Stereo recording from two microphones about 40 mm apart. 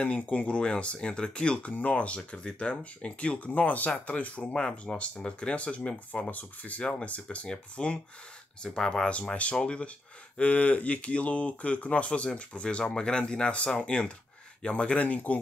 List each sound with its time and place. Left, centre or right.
0.0 s speech: left
4.6 s speech: centre
4.9 s speech: left
8.6 s speech: centre
9.0 s speech: left